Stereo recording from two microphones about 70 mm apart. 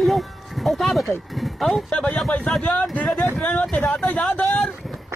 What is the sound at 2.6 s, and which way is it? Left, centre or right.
Speech, centre.